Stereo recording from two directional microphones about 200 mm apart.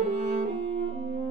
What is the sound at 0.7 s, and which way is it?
French horn, 35° right (ahead or behind).